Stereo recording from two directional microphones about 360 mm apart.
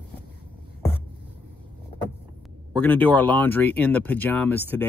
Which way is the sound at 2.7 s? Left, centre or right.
Centre.